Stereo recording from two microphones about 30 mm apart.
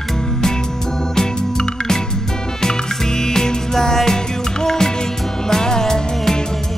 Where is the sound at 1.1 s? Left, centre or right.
Centre.